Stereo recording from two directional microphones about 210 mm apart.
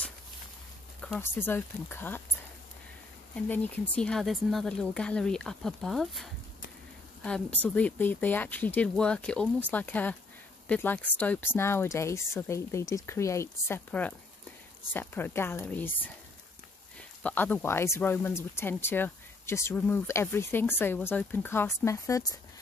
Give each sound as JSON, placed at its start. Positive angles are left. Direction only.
{"t": 1.0, "sound": "speech", "side_deg": 5}
{"t": 3.3, "sound": "speech", "side_deg": 10}
{"t": 7.2, "sound": "speech", "side_deg": 5}
{"t": 17.2, "sound": "speech", "side_deg": 5}